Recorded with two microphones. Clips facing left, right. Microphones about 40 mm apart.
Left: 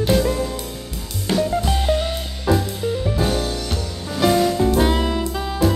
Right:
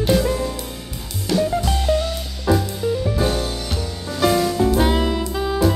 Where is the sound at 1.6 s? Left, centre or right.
Centre.